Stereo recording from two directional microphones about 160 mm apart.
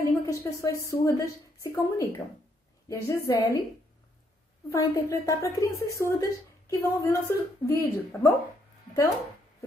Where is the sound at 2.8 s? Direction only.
20° left (ahead or behind).